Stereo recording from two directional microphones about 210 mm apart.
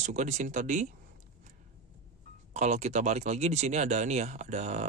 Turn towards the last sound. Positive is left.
turn(degrees=-30)  # may be behind; listen again after turning